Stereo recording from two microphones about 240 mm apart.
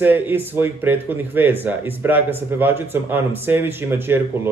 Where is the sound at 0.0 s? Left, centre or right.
Centre.